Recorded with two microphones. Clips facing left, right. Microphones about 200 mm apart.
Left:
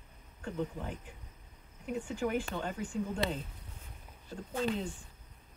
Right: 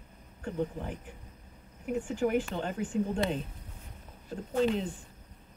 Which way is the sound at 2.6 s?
30° right (ahead or behind).